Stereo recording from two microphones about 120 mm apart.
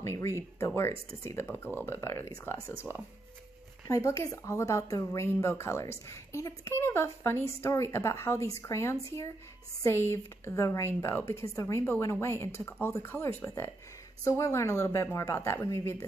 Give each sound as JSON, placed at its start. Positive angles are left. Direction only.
{"t": 0.0, "sound": "a woman's voice", "side_deg": 20}
{"t": 3.8, "sound": "a woman's voice", "side_deg": 25}